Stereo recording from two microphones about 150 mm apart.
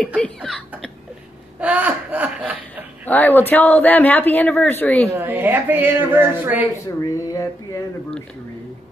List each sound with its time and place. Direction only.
0.2 s speech: 5° left (ahead or behind)
1.6 s speech: 10° right (ahead or behind)
3.1 s speech: 10° left (ahead or behind)
5.2 s speech: 15° right (ahead or behind)
7.0 s speech: 20° left (ahead or behind)